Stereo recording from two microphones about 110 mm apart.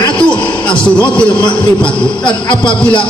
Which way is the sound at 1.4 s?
45° left (ahead or behind).